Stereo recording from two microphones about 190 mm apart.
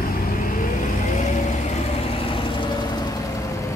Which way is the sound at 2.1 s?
30° left (ahead or behind).